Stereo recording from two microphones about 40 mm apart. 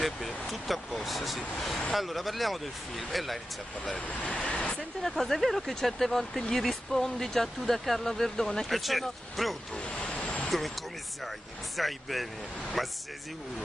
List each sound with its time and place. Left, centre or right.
0.0 s speech: centre
4.1 s speech: left
4.6 s speech: centre
8.6 s speech: centre
9.8 s a sound: left
11.7 s speech: centre